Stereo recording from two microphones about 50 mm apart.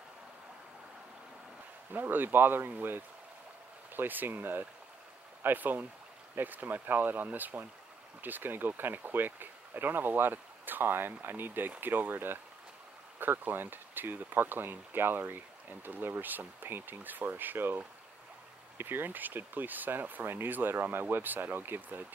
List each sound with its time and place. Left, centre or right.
1.9 s speech: right
18.8 s speech: right